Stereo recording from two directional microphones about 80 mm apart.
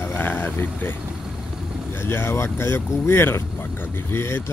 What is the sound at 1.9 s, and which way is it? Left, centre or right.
Speech, left.